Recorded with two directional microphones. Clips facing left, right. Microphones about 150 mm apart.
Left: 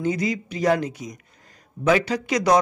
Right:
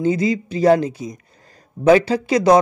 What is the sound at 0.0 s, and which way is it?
Speech, 30° right (ahead or behind).